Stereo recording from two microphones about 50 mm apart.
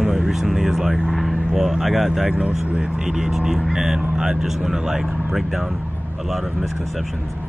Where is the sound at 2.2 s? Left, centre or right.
Right.